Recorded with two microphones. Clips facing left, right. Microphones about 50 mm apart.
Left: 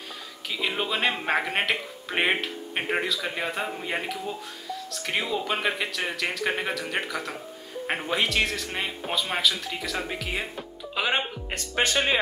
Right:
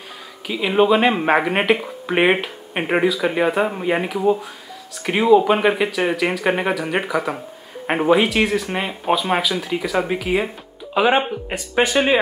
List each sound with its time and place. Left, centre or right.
0.5 s speech: centre